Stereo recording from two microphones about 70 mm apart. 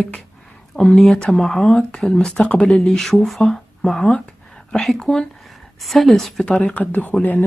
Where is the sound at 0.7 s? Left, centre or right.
Centre.